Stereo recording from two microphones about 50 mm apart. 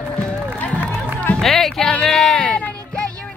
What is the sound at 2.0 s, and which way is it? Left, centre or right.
Music, centre.